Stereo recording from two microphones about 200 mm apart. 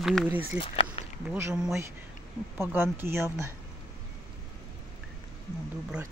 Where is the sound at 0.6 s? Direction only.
30° left (ahead or behind).